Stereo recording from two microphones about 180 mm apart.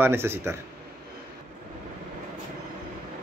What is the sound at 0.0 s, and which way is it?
Speech, 15° right (ahead or behind).